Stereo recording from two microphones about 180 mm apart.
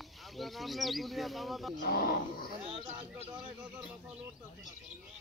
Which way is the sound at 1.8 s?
55° left (ahead or behind).